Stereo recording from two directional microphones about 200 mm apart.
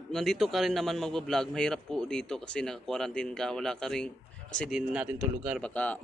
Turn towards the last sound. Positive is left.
turn(degrees=5)  # may be behind; listen again after turning